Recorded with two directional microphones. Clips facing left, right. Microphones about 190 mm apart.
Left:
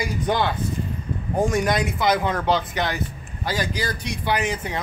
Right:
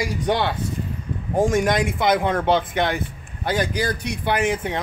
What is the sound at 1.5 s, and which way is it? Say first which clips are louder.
Speech: right 2 dB; 50° right (ahead or behind).